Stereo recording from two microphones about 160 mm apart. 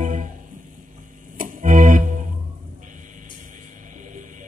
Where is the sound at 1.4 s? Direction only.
55° right (ahead or behind).